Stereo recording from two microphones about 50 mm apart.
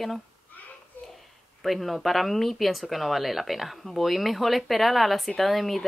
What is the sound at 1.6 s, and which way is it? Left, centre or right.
Speech, centre.